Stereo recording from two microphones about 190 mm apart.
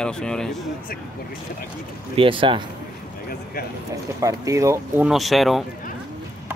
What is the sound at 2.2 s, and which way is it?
Speech, 25° right (ahead or behind).